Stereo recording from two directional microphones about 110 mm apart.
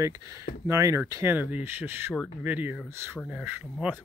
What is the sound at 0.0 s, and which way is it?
Speech, 30° right (ahead or behind).